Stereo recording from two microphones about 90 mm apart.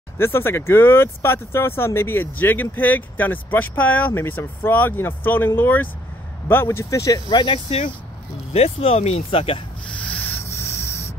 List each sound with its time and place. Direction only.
0.2 s speech: 25° left (ahead or behind)
7.2 s speech: 70° left (ahead or behind); by 9.6 s 90° left
9.8 s a sound: 15° left (ahead or behind)
10.5 s spray: 30° left (ahead or behind)